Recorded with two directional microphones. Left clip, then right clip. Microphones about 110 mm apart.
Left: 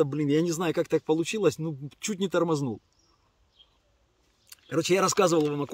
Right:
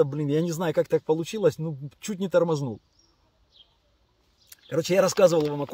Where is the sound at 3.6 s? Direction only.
40° left (ahead or behind).